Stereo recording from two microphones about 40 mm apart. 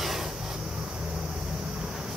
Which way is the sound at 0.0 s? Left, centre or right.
Centre.